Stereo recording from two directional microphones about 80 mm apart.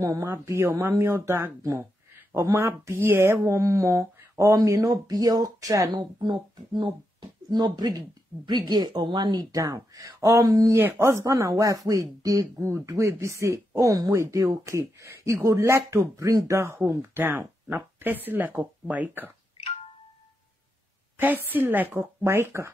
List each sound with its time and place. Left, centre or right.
0.0 s speech: right
5.9 s speech: right
10.8 s speech: right
12.5 s speech: right
17.2 s speech: right
21.2 s a woman's voice: right